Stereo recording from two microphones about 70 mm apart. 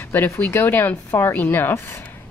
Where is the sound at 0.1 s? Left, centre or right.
Left.